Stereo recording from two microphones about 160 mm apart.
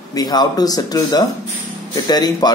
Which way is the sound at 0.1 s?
25° left (ahead or behind).